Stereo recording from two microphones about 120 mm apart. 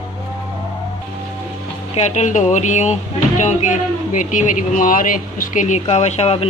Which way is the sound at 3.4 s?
90° left.